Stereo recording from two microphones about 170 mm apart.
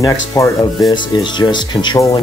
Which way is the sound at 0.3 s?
20° left (ahead or behind).